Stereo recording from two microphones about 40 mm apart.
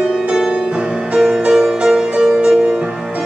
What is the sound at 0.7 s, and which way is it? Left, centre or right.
Music, right.